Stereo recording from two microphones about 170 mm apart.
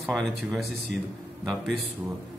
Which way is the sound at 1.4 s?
Centre (ahead or behind).